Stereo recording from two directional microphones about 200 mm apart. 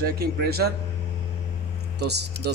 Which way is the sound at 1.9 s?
55° right (ahead or behind).